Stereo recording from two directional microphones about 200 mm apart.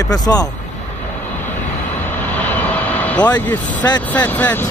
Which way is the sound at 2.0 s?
10° left (ahead or behind).